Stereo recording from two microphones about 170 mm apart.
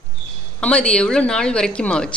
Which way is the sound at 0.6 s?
5° left (ahead or behind).